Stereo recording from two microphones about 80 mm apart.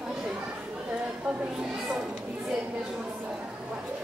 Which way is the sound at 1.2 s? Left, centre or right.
Centre.